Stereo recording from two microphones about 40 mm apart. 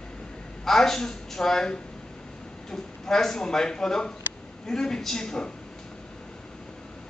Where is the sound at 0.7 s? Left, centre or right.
Centre.